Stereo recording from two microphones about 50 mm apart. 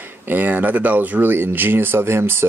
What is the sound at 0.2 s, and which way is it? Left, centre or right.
Speech, right.